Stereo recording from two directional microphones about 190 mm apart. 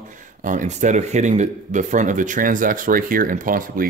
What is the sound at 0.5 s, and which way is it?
Speech, 40° right (ahead or behind).